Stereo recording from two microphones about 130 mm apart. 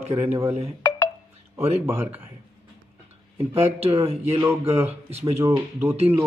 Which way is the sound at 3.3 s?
50° right (ahead or behind).